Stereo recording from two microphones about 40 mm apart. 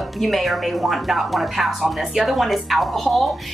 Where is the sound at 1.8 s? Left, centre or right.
Centre.